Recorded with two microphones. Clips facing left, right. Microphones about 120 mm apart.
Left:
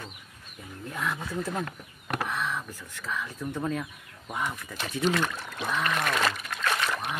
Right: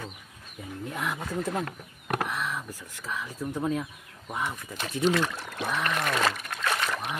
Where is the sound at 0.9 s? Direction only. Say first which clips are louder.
Even; 15° right (ahead or behind).